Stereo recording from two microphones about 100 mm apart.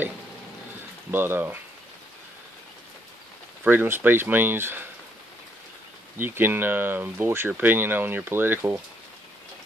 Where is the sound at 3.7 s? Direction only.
20° right (ahead or behind).